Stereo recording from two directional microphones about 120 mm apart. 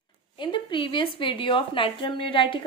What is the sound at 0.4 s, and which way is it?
Speech, 40° left (ahead or behind).